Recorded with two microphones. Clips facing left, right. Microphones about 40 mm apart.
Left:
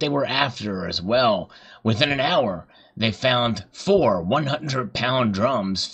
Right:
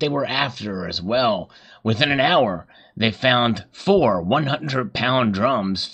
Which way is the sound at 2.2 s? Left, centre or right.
Right.